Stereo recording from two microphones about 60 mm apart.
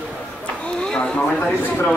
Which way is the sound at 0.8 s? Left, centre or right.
Centre.